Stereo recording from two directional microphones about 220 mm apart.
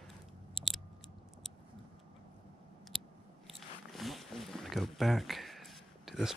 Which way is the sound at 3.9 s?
Centre (ahead or behind).